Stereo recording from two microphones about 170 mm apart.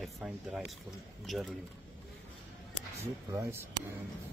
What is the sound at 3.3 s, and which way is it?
Speech, 15° right (ahead or behind).